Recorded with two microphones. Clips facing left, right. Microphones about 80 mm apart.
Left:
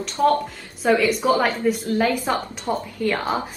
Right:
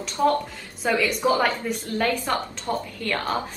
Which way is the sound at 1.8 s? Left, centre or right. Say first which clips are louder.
Left 4 dB; centre.